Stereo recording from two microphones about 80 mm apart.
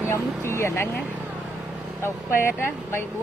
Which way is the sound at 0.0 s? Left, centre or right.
Left.